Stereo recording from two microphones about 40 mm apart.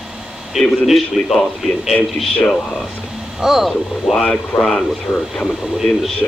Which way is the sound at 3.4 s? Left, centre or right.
Centre.